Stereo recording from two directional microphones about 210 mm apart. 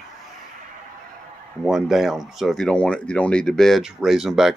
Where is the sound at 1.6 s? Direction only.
Centre (ahead or behind).